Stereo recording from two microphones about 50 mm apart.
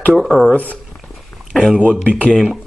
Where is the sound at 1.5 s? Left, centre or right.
Centre.